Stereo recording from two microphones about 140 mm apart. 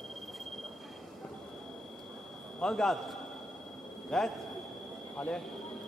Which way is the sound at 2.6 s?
5° left (ahead or behind).